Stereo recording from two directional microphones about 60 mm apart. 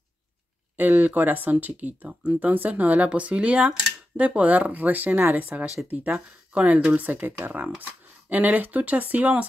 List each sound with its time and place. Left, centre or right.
0.7 s speech: right
5.2 s speech: right
5.9 s speech: right